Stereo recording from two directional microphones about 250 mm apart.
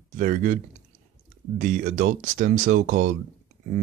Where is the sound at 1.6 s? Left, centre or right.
Right.